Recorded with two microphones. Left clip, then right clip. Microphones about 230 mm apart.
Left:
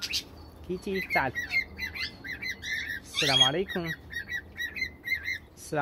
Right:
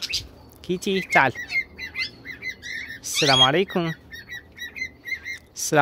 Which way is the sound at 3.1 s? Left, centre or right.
Right.